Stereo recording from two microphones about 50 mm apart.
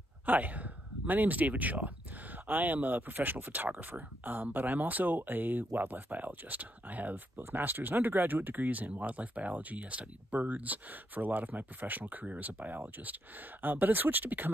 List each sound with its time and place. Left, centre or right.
0.3 s speech: right